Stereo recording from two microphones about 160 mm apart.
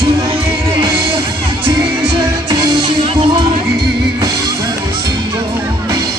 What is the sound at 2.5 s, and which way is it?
Music, 30° right (ahead or behind).